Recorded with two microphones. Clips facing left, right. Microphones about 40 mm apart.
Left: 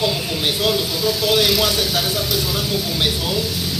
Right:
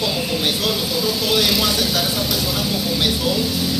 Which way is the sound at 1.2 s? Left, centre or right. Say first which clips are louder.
Left 2 dB; left.